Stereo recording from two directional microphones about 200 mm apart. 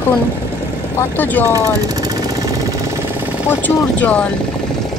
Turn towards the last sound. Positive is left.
turn(degrees=10)  # may be behind; listen again after turning